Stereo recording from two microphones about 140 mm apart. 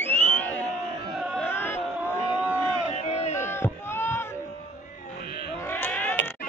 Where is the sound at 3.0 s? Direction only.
50° left (ahead or behind).